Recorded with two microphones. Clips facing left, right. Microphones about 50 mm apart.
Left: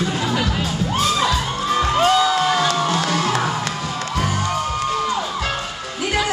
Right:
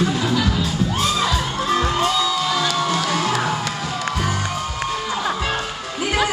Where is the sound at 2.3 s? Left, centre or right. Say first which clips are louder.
Left 3 dB; left.